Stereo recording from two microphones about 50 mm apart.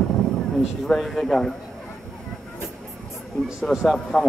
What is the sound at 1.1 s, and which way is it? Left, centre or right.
Speech, centre.